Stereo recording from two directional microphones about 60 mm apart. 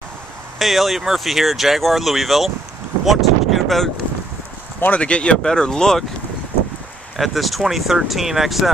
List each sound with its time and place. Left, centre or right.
0.6 s speech: centre
3.1 s wind noise: centre
4.7 s speech: left
5.0 s speech: centre
7.2 s speech: centre